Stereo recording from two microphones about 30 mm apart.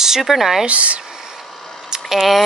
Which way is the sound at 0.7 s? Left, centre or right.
Right.